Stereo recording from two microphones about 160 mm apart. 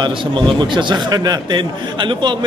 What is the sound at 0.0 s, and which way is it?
A man's voice, 30° right (ahead or behind).